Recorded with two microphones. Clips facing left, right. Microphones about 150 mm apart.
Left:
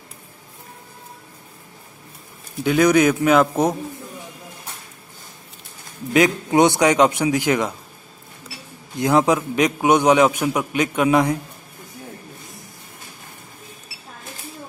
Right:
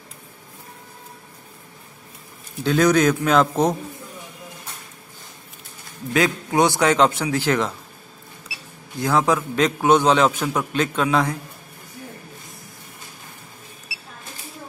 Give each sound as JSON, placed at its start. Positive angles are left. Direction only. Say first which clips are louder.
{"t": 2.6, "sound": "a man's voice", "louder": "left 2 dB", "side_deg": 15}
{"t": 6.1, "sound": "a man's voice", "louder": "left 4 dB", "side_deg": 20}
{"t": 8.9, "sound": "a man's voice", "louder": "left 3 dB", "side_deg": 20}